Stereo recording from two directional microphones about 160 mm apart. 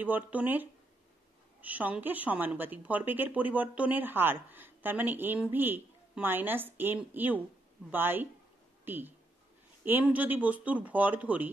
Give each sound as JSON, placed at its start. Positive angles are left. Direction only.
{"t": 0.0, "sound": "a woman's voice", "side_deg": -10}